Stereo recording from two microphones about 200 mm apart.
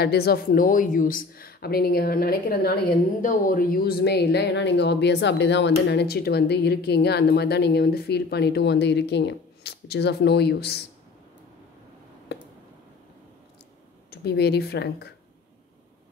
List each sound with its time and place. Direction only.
0.0 s speech: 50° left (ahead or behind)
14.1 s speech: 55° left (ahead or behind)